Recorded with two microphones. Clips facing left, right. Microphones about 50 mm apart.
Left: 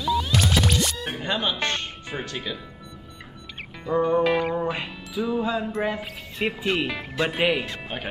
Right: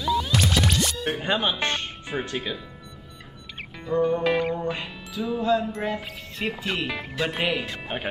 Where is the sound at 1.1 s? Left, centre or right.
Centre.